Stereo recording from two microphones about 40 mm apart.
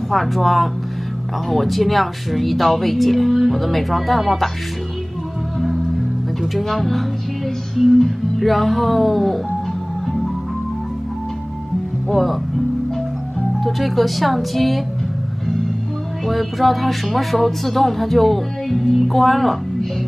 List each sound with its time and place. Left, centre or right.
0.1 s music: centre
6.5 s music: centre
8.0 s music: centre
12.1 s music: centre
13.7 s music: centre
16.3 s music: centre